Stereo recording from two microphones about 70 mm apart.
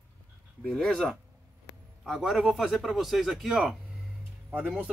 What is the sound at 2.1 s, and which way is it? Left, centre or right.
A man's voice, centre.